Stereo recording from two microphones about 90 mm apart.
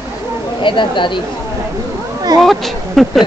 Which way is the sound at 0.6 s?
65° left (ahead or behind).